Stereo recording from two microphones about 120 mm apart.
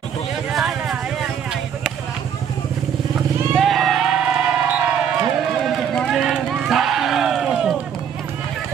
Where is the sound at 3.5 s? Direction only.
Centre (ahead or behind).